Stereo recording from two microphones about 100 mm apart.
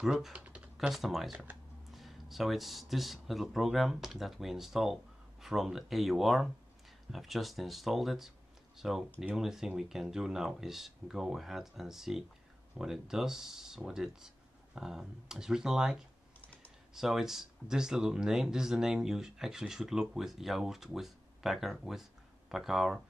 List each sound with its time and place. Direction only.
0.0 s speech: 5° right (ahead or behind)
16.3 s a sound: 15° left (ahead or behind)
16.9 s speech: 5° right (ahead or behind)